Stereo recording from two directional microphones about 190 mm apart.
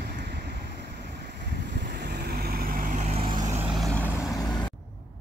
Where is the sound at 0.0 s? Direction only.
60° right (ahead or behind).